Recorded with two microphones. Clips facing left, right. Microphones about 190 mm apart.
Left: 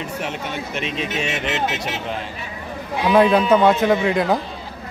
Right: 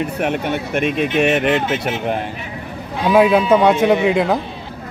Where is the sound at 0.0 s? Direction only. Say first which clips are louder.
Right 7 dB; 60° right (ahead or behind).